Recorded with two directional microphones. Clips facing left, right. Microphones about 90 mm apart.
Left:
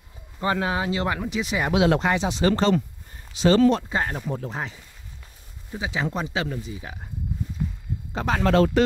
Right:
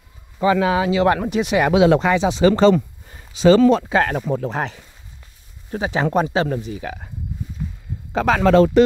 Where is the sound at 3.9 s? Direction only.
90° right; by 4.8 s 65° right (ahead or behind).